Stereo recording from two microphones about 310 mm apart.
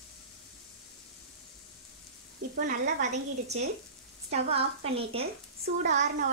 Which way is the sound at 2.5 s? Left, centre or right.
Right.